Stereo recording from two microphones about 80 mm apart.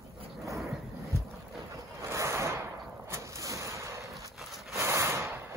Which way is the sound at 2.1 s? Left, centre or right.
Right.